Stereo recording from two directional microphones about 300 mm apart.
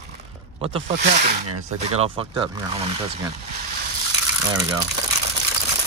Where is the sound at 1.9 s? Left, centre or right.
Centre.